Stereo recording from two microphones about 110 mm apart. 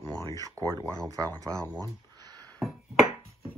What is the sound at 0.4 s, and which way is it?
Speech, 30° right (ahead or behind).